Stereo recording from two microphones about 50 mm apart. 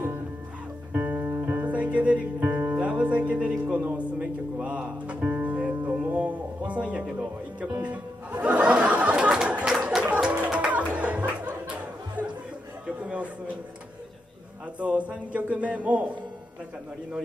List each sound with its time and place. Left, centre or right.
0.9 s music: right
1.2 s music: right
12.8 s a sound: right
14.8 s a man's voice: right